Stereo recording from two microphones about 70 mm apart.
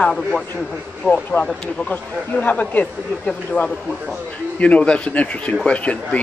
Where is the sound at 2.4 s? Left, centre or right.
Left.